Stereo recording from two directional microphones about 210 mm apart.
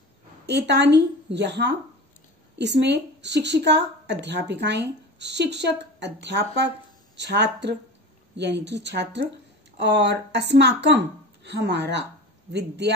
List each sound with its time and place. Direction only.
0.5 s a woman's voice: 55° right (ahead or behind)